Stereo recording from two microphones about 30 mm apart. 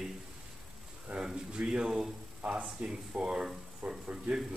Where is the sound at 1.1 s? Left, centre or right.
Right.